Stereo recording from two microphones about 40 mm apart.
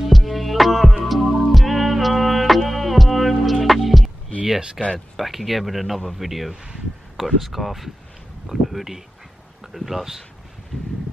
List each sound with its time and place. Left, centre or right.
0.1 s music: centre
4.5 s a sound: centre
4.7 s speech: left
5.1 s a man's voice: centre